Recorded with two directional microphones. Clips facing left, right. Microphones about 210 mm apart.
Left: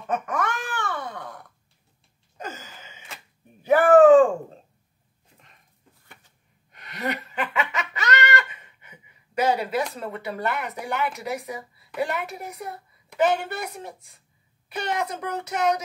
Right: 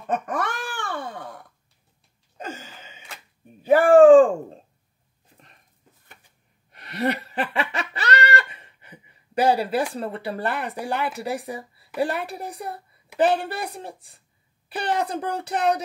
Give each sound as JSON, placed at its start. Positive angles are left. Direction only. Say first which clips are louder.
{"t": 0.1, "sound": "wail", "louder": "right 1 dB", "side_deg": -35}
{"t": 3.8, "sound": "a sound", "louder": "right 2 dB", "side_deg": -30}
{"t": 6.7, "sound": "laughter", "louder": "right 5 dB", "side_deg": -35}
{"t": 9.9, "sound": "speech", "louder": "right 3 dB", "side_deg": -30}